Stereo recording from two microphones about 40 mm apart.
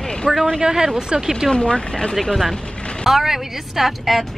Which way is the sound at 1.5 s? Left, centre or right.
Centre.